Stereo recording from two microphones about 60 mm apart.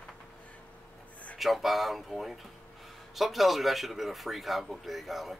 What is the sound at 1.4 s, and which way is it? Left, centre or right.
Speech, centre.